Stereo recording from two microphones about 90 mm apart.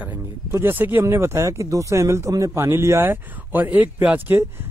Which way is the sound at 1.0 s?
30° right (ahead or behind).